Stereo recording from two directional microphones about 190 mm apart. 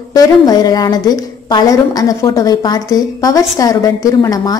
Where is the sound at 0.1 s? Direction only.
20° left (ahead or behind).